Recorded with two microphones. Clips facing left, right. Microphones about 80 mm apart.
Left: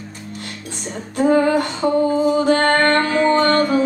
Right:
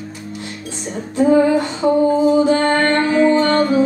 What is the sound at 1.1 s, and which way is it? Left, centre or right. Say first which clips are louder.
Female singing: right 2 dB; left.